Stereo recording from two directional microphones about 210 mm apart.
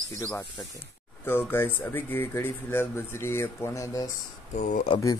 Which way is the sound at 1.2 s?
10° left (ahead or behind).